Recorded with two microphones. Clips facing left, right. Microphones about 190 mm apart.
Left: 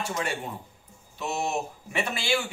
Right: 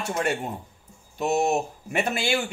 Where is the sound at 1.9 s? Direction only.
50° right (ahead or behind).